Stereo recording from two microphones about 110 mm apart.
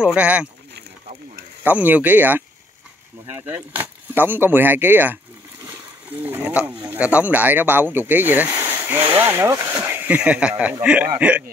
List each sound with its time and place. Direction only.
0.0 s speech: 10° right (ahead or behind)
1.6 s speech: 15° right (ahead or behind)
10.0 s speech: 10° right (ahead or behind)